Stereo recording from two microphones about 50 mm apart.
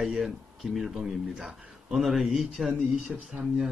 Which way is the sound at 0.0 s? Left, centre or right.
Centre.